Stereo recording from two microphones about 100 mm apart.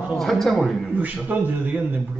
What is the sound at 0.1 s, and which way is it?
Speech, 5° left (ahead or behind).